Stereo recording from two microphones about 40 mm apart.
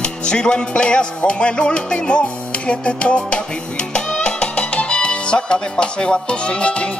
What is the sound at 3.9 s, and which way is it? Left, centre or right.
Speech, left.